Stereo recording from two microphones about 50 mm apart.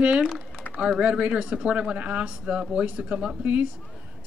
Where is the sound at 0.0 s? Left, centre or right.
Right.